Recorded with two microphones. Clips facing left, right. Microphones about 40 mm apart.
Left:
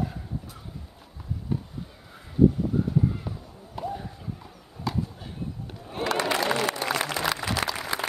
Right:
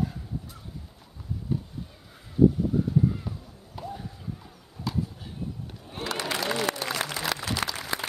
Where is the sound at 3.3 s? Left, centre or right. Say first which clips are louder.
Left 1 dB; centre.